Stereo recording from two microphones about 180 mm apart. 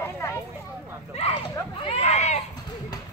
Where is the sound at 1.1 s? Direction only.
35° left (ahead or behind).